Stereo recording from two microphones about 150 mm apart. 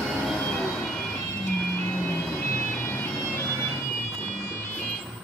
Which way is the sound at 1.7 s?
10° left (ahead or behind).